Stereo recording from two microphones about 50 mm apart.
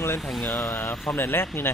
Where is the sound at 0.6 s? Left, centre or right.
Left.